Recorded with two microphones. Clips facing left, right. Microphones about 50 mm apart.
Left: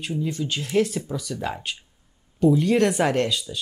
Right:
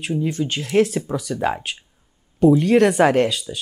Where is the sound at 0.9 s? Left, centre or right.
Right.